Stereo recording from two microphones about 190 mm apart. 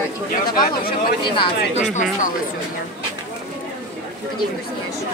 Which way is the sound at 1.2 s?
30° left (ahead or behind).